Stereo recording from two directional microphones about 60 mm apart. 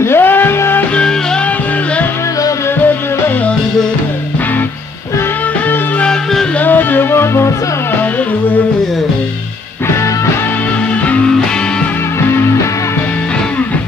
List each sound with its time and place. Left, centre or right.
0.0 s music: left
6.6 s music: left
11.1 s music: left
12.2 s music: left